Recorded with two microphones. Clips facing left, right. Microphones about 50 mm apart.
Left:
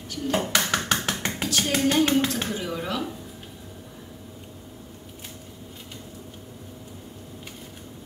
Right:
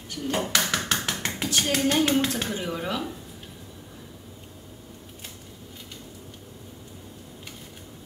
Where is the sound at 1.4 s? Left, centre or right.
Centre.